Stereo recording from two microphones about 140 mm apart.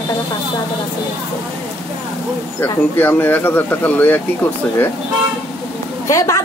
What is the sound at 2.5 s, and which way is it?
Speech, 15° left (ahead or behind).